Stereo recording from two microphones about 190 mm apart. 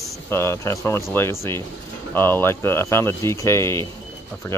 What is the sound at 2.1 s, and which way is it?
Speech, 10° left (ahead or behind).